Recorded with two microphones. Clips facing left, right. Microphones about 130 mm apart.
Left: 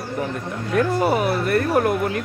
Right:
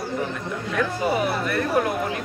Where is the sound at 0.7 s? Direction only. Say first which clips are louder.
Left 5 dB; 50° left (ahead or behind).